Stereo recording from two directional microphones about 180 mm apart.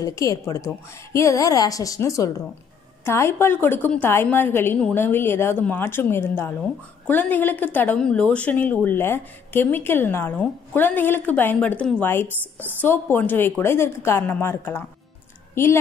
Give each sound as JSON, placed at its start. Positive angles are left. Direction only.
{"t": 0.0, "sound": "a woman's voice", "side_deg": 20}